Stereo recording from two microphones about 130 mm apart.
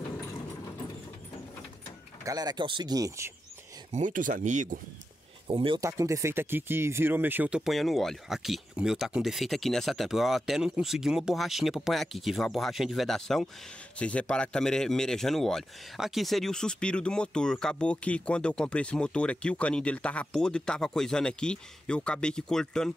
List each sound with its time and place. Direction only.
2.2 s speech: 30° right (ahead or behind)
3.9 s speech: 80° right
5.5 s speech: 45° right (ahead or behind)
5.8 s speech: 25° right (ahead or behind); by 22.9 s 5° left (ahead or behind)